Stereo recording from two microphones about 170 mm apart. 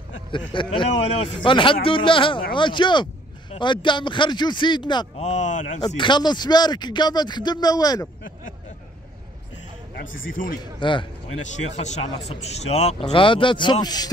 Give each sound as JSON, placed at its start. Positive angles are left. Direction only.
{"t": 0.3, "sound": "speech", "side_deg": 30}
{"t": 5.2, "sound": "speech", "side_deg": 45}
{"t": 5.9, "sound": "speech", "side_deg": 25}
{"t": 10.0, "sound": "speech", "side_deg": 55}
{"t": 10.8, "sound": "speech", "side_deg": 30}
{"t": 11.5, "sound": "a man's voice", "side_deg": 40}